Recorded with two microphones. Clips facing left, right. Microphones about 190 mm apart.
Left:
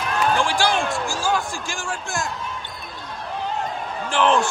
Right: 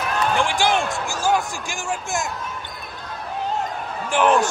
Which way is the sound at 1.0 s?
20° right (ahead or behind).